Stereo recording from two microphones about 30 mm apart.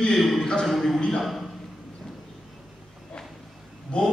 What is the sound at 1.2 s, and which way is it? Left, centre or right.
Speech, centre.